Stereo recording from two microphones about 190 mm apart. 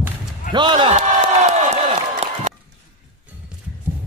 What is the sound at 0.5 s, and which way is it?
Speech, 25° right (ahead or behind).